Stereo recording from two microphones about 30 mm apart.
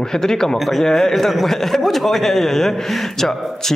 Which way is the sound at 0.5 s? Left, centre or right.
Centre.